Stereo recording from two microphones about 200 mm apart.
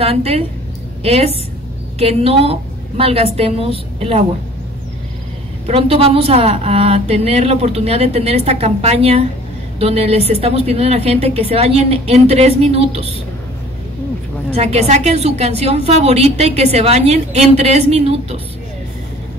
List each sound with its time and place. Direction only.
0.0 s a woman's voice: 30° right (ahead or behind)
5.7 s a woman's voice: 30° right (ahead or behind)
14.5 s a woman's voice: 30° right (ahead or behind)